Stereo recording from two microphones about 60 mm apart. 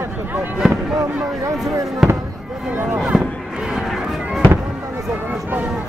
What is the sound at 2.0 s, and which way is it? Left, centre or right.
Fireworks, centre.